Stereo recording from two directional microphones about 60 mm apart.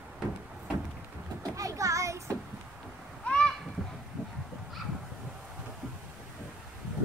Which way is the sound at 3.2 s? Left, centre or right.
Centre.